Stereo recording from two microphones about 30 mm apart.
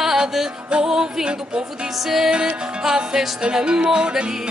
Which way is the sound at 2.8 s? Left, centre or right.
Right.